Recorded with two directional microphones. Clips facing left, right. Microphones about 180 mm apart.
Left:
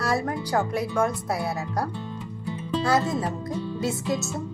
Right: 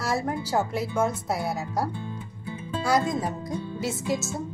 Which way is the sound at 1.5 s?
Centre (ahead or behind).